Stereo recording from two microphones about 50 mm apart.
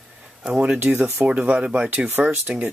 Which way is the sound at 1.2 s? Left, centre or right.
Right.